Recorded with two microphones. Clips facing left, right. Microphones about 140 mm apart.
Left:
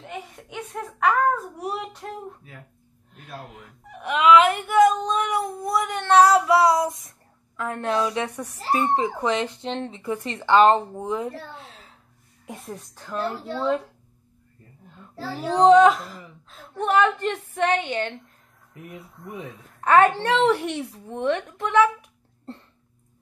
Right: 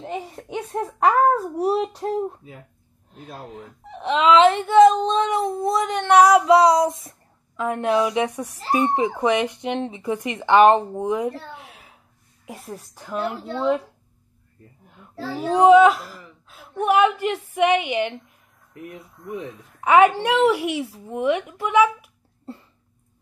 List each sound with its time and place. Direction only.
0.0 s a child's voice: 30° right (ahead or behind)
3.3 s speech: 25° right (ahead or behind)
12.4 s a woman's voice: 5° right (ahead or behind)
15.3 s speech: 10° right (ahead or behind)
19.8 s speech: 10° right (ahead or behind)